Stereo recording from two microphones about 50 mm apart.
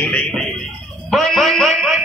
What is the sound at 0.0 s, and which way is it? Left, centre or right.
Music, left.